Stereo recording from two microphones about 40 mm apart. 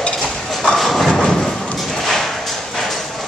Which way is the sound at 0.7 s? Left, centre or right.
Centre.